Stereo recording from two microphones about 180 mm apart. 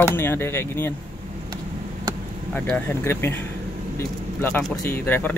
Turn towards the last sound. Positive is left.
turn(degrees=10)  # may be behind; listen again after turning